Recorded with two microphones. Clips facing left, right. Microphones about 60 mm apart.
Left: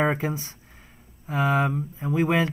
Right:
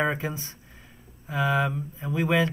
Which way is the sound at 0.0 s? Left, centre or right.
Left.